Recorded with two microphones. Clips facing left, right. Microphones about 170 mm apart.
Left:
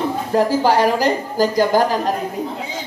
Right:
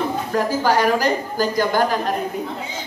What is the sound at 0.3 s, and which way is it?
A woman's voice, 30° left (ahead or behind).